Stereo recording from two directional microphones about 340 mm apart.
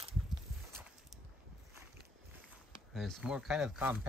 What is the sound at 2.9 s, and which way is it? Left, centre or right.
Speech, centre.